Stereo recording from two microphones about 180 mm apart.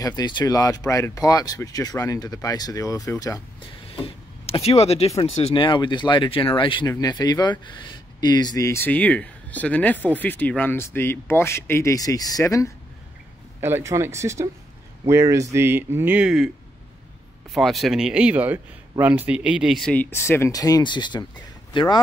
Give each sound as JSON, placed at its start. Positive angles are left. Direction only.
{"t": 0.0, "sound": "speech", "side_deg": 25}
{"t": 3.9, "sound": "power windows", "side_deg": 35}
{"t": 5.2, "sound": "speech", "side_deg": 30}
{"t": 13.6, "sound": "speech", "side_deg": -15}
{"t": 17.6, "sound": "a man's voice", "side_deg": 0}